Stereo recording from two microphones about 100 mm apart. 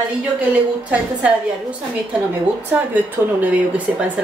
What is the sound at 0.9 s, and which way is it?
A woman's voice, 10° right (ahead or behind).